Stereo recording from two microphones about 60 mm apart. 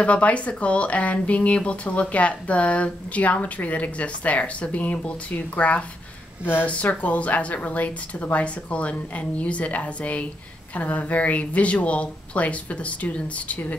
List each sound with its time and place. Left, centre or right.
0.0 s speech: left